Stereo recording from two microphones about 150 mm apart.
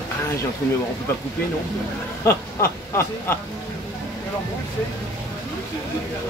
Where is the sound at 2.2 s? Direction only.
15° left (ahead or behind).